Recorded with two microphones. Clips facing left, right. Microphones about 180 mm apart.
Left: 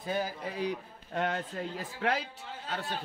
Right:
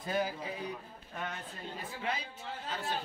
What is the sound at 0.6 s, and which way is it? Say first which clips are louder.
Speech: left 7 dB; 80° left.